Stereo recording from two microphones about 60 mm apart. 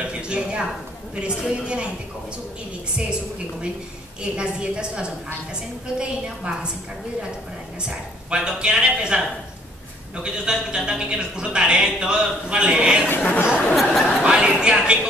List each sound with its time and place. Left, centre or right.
0.0 s a sound: centre
1.1 s speech: centre
4.2 s speech: centre
7.8 s speech: centre
13.0 s speech: left
13.7 s speech: centre
14.2 s speech: centre